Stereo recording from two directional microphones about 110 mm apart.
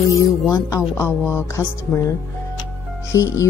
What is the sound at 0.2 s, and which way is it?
Speech, 30° left (ahead or behind).